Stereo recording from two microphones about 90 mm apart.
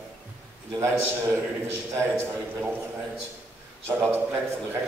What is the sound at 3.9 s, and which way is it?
Speech, 25° right (ahead or behind).